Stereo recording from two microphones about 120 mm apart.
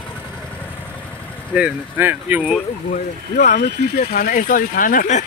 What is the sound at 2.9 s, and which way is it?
Speech, 90° left.